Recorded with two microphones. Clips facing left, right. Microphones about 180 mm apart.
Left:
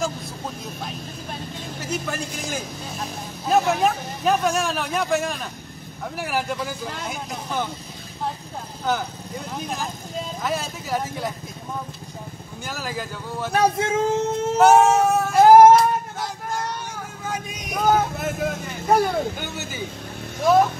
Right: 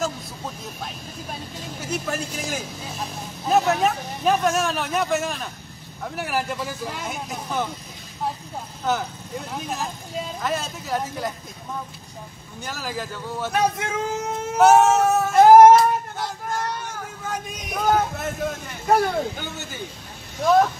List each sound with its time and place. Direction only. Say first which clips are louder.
1.6 s speech: even; centre (ahead or behind)
8.8 s speech: even; centre (ahead or behind)
12.6 s speech: even; centre (ahead or behind)
13.5 s a sound: left 4 dB; 30° left (ahead or behind)
14.6 s a sound: even; centre (ahead or behind)
17.3 s speech: left 1 dB; centre (ahead or behind)